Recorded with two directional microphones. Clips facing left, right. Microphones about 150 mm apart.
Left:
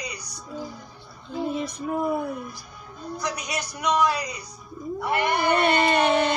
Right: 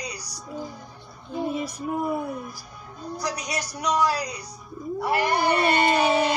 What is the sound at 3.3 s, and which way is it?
Speech, 35° right (ahead or behind).